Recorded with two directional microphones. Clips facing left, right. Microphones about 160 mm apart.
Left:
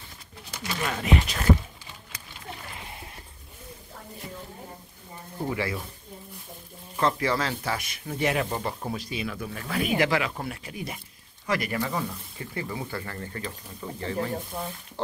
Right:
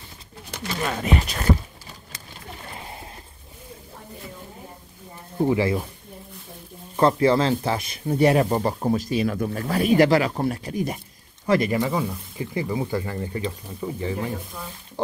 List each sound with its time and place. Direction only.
1.0 s a sound: 40° right (ahead or behind)
5.4 s speech: 25° right (ahead or behind)
7.0 s speech: 30° right (ahead or behind)
11.4 s speech: 25° right (ahead or behind)
11.7 s speech: 15° right (ahead or behind)
14.5 s speech: 30° left (ahead or behind)